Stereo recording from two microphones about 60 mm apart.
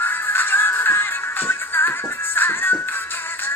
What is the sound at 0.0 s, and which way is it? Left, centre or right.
Music, left.